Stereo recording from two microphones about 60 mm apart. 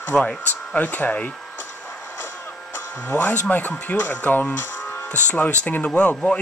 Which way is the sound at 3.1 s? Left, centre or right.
Left.